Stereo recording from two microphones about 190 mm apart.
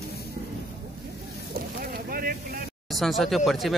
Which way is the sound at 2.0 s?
50° right (ahead or behind).